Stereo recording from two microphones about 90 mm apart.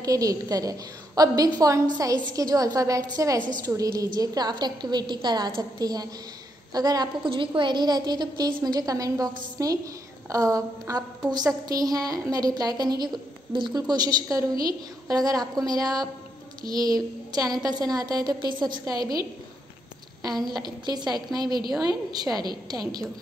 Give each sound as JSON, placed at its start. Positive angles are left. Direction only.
{"t": 0.0, "sound": "a woman's voice", "side_deg": -40}
{"t": 7.2, "sound": "a woman's voice", "side_deg": -70}
{"t": 13.5, "sound": "speech", "side_deg": -65}
{"t": 13.7, "sound": "a woman's voice", "side_deg": -45}